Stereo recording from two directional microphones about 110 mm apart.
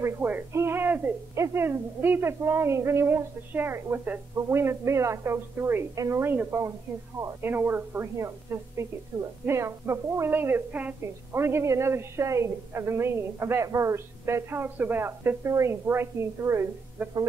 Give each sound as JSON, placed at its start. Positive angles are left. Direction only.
{"t": 0.0, "sound": "a woman's voice", "side_deg": -20}
{"t": 9.1, "sound": "a woman's voice", "side_deg": -35}
{"t": 9.5, "sound": "a woman's voice", "side_deg": -25}